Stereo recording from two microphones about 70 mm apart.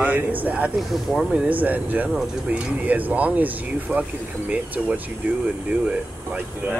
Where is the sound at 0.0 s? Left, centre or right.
Right.